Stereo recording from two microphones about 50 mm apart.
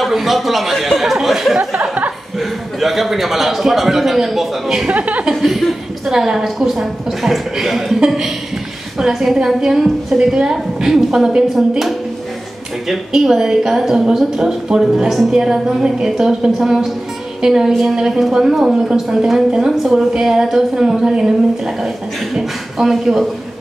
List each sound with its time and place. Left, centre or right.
0.0 s speech: centre
1.6 s a sound: centre
2.3 s a man's voice: centre
4.8 s a woman's voice: right
5.2 s chuckle: centre
6.1 s a woman's voice: centre
12.8 s a woman's voice: centre